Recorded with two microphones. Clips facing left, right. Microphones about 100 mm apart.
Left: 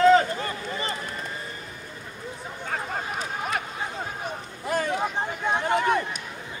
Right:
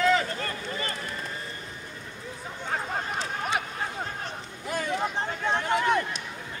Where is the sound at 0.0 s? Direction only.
35° left (ahead or behind).